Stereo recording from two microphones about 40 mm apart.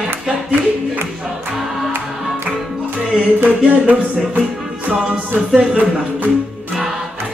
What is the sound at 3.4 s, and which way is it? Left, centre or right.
Music, right.